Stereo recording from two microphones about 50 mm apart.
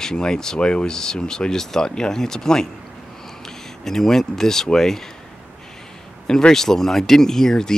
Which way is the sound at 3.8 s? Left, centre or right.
Centre.